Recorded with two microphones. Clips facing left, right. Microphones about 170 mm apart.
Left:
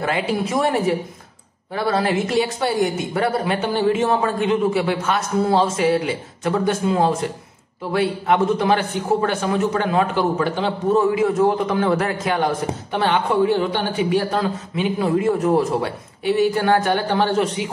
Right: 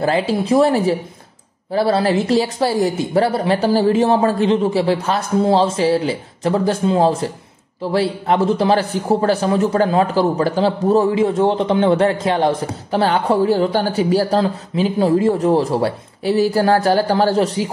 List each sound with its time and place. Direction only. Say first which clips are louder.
0.0 s a man's voice: right 4 dB; 30° right (ahead or behind)